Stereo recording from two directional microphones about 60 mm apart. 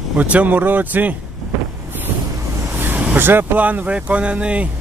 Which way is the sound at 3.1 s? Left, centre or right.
Right.